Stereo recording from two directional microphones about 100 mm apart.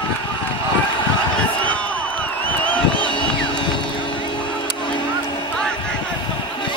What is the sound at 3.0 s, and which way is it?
Music, 55° left (ahead or behind).